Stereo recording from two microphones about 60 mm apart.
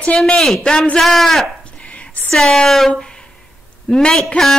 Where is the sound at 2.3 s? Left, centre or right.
Centre.